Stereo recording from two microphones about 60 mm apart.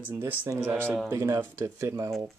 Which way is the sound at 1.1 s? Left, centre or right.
Right.